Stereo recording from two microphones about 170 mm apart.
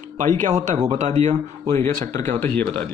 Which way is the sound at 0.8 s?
45° right (ahead or behind).